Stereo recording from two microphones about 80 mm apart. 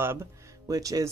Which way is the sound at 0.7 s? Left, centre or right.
Right.